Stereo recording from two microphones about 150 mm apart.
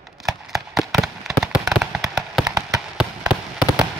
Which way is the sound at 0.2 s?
Centre (ahead or behind).